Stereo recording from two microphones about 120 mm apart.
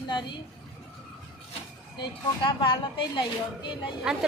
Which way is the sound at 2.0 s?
40° left (ahead or behind).